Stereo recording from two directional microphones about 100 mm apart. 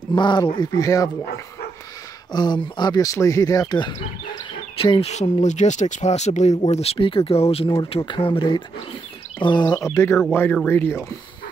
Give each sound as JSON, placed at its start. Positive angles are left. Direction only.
{"t": 0.1, "sound": "speech", "side_deg": 50}
{"t": 0.6, "sound": "speech", "side_deg": 35}
{"t": 2.3, "sound": "speech", "side_deg": 50}
{"t": 5.6, "sound": "speech", "side_deg": 90}
{"t": 8.0, "sound": "speech", "side_deg": 55}
{"t": 9.8, "sound": "speech", "side_deg": 25}